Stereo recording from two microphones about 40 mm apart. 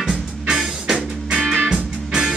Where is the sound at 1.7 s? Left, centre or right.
Centre.